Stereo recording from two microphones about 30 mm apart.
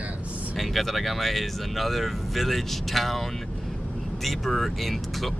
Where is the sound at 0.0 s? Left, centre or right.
Right.